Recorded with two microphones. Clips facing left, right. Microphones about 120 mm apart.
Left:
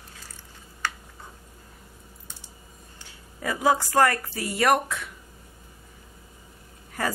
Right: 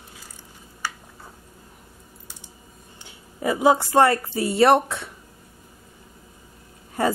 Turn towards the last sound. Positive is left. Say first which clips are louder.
# right 6 dB
turn(degrees=-25)  # may be behind; listen again after turning